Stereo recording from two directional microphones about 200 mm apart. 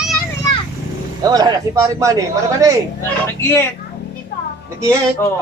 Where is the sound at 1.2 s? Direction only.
20° right (ahead or behind).